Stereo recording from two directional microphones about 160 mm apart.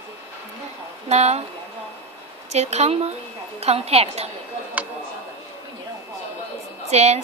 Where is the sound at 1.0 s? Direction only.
45° right (ahead or behind).